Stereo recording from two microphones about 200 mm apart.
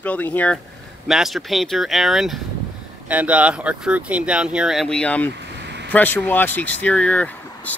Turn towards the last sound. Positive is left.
turn(degrees=5)  # may be behind; listen again after turning